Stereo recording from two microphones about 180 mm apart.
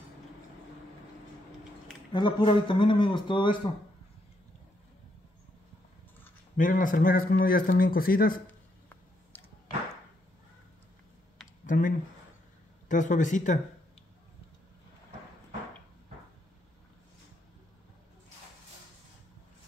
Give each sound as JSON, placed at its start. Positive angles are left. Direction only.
{"t": 2.1, "sound": "a man's voice", "side_deg": 25}
{"t": 6.5, "sound": "a man's voice", "side_deg": 50}
{"t": 11.6, "sound": "a sound", "side_deg": 50}
{"t": 12.8, "sound": "a man's voice", "side_deg": 45}